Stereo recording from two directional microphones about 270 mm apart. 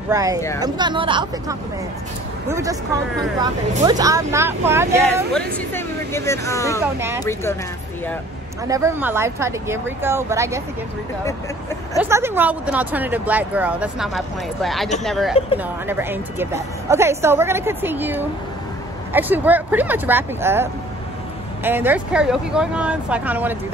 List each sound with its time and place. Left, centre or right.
0.1 s a woman's voice: centre
3.8 s a woman's voice: centre
5.0 s speech: centre
6.8 s a woman's voice: centre
8.6 s a woman's voice: centre
12.0 s a woman's voice: centre
21.6 s speech: centre